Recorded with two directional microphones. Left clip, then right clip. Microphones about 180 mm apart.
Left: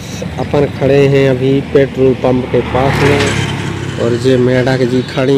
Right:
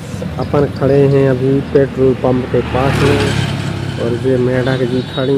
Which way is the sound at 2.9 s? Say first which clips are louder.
Left 3 dB; 60° right (ahead or behind).